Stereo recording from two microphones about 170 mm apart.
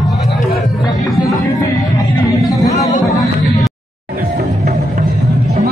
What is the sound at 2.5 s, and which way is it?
Music, 20° left (ahead or behind).